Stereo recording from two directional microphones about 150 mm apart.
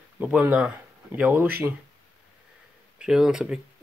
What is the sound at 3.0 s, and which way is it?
Speech, 5° right (ahead or behind).